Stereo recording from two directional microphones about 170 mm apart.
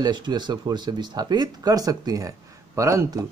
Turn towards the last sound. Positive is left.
turn(degrees=-20)  # may be behind; listen again after turning